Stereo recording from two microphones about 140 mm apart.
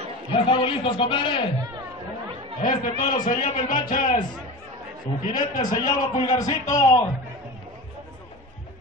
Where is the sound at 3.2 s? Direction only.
70° left (ahead or behind).